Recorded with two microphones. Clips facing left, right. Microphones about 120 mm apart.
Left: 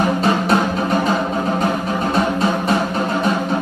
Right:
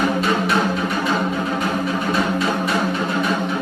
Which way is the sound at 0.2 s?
35° left (ahead or behind).